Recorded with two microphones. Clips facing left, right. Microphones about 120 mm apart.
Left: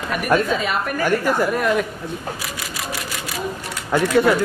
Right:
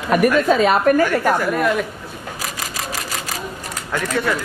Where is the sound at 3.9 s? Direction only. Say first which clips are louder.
Left 5 dB; 15° left (ahead or behind).